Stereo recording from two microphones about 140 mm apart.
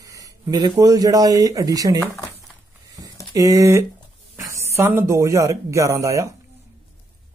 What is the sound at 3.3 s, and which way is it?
Speech, 25° right (ahead or behind).